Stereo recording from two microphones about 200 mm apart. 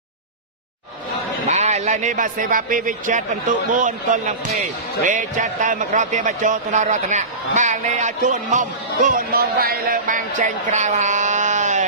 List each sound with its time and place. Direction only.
1.5 s speech: 35° right (ahead or behind)